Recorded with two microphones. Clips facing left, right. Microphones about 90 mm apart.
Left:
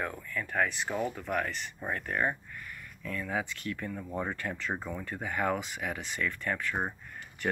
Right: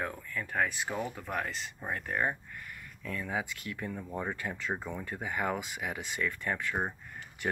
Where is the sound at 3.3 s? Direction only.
15° right (ahead or behind).